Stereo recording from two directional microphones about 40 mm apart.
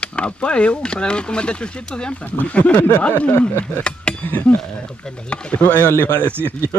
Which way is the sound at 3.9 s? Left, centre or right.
Left.